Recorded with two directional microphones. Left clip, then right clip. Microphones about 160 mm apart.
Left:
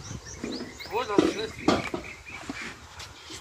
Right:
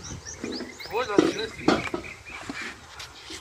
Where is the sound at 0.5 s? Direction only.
60° left (ahead or behind).